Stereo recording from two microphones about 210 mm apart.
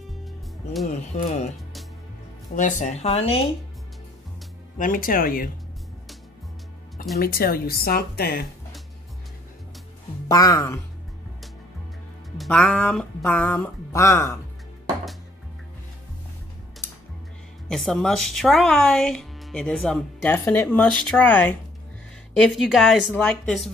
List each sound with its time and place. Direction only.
0.8 s speech: 35° left (ahead or behind)
2.5 s speech: 35° left (ahead or behind)
4.7 s speech: 40° left (ahead or behind)
7.2 s speech: 45° left (ahead or behind)
10.2 s speech: 15° left (ahead or behind)
12.4 s speech: 5° left (ahead or behind)
17.6 s speech: centre (ahead or behind)